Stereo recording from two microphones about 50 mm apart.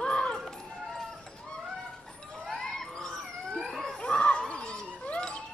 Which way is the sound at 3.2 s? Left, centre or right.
Centre.